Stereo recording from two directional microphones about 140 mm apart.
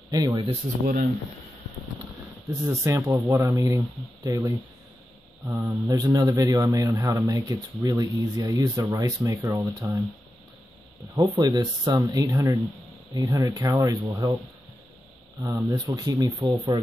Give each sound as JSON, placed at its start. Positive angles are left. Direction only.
{"t": 0.1, "sound": "speech", "side_deg": -25}
{"t": 0.5, "sound": "speech", "side_deg": -60}
{"t": 2.8, "sound": "speech", "side_deg": -20}
{"t": 11.1, "sound": "speech", "side_deg": -25}
{"t": 15.4, "sound": "speech", "side_deg": -20}